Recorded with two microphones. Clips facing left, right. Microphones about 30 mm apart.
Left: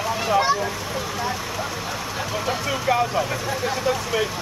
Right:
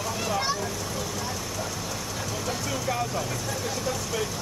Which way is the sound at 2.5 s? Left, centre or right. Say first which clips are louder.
Left 8 dB; left.